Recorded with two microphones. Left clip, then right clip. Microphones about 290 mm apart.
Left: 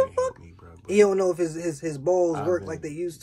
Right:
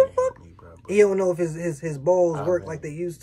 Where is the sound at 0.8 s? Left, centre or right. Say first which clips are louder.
Right 1 dB; centre.